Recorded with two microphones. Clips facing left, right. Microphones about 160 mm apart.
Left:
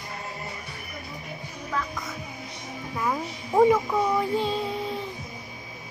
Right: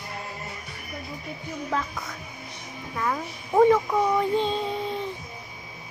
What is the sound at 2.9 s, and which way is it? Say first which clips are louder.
Music: even; 10° left (ahead or behind).